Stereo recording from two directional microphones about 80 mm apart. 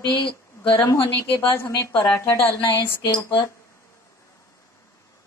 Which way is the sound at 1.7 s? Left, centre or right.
Left.